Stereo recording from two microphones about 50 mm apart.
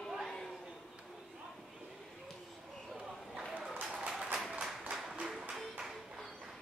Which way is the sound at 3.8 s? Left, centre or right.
Centre.